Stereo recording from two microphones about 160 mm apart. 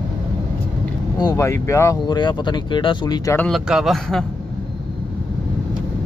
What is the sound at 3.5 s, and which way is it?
Speech, 5° right (ahead or behind).